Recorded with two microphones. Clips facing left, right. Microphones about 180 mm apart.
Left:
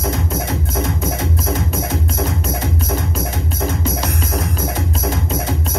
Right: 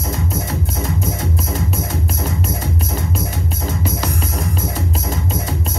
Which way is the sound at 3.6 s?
90° left.